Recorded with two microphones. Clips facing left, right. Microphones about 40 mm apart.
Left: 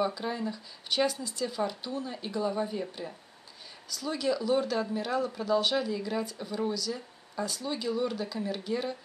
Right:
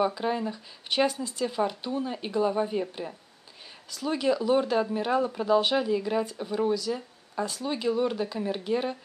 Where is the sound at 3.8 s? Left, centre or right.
Right.